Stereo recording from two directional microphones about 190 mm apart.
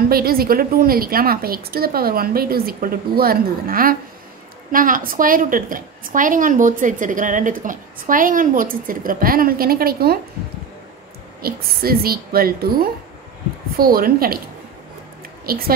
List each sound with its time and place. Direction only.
0.1 s a woman's voice: 50° right (ahead or behind)
11.4 s a woman's voice: 50° right (ahead or behind)
15.4 s speech: 50° right (ahead or behind)